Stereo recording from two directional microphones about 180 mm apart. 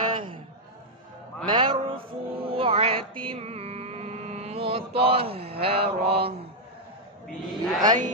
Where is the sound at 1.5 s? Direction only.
25° right (ahead or behind).